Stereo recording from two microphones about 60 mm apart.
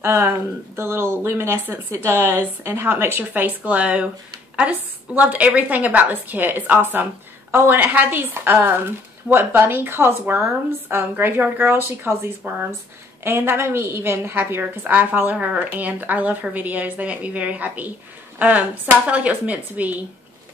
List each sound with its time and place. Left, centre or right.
0.0 s speech: right
3.3 s a woman's voice: right